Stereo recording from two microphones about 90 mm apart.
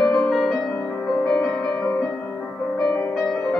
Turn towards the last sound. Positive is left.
turn(degrees=0)  # may be behind; listen again after turning